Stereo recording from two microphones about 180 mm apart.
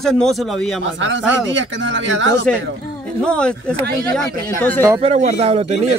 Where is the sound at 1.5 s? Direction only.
90° right.